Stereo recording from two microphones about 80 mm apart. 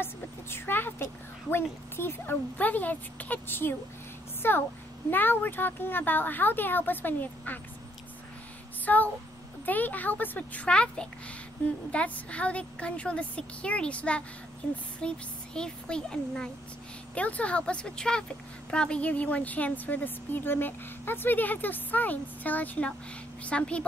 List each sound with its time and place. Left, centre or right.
0.0 s vehicle: left
1.5 s a woman's voice: left
8.8 s a woman's voice: centre